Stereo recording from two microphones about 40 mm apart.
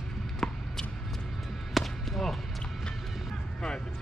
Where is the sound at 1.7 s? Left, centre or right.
Centre.